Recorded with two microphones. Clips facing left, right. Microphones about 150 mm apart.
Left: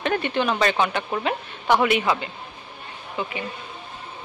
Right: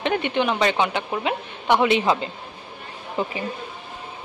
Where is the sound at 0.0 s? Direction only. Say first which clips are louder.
Right 1 dB; 20° right (ahead or behind); by 3.3 s 40° right (ahead or behind).